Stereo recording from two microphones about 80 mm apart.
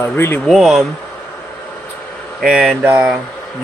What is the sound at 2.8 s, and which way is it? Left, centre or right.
Speech, centre.